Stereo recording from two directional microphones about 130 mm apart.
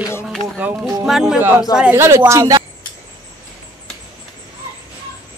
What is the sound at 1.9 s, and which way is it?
Speech, 20° right (ahead or behind).